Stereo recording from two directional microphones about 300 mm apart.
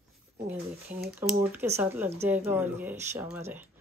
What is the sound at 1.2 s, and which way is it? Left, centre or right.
Speech, centre.